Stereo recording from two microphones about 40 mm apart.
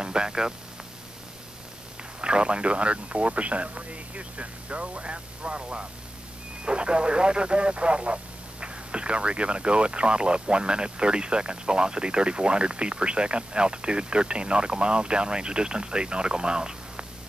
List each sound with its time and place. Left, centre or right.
0.0 s speech: centre
2.2 s speech: right